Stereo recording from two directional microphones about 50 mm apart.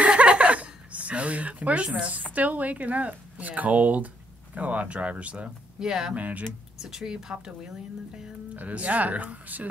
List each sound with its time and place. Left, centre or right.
0.0 s a sound: right
2.0 s speech: right
5.8 s speech: centre
6.1 s speech: right
6.8 s speech: centre
8.5 s speech: right